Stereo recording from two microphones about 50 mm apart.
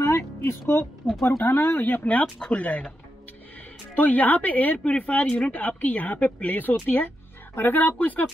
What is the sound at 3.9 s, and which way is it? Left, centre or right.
Speech, left.